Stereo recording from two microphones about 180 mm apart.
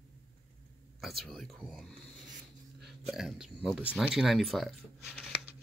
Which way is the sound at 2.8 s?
Centre (ahead or behind).